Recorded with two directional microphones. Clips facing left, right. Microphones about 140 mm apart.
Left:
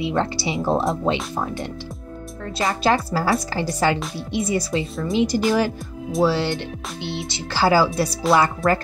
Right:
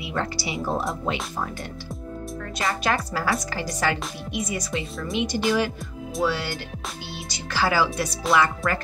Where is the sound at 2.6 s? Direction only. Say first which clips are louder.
Left 5 dB; 30° left (ahead or behind).